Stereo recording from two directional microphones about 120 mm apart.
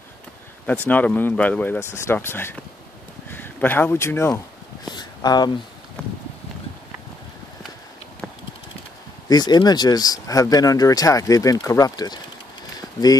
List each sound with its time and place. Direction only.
0.8 s speech: 15° left (ahead or behind)
4.8 s speech: 35° left (ahead or behind)
6.0 s clip-clop: 10° left (ahead or behind)
9.3 s speech: 35° left (ahead or behind)
12.7 s a sound: 30° left (ahead or behind)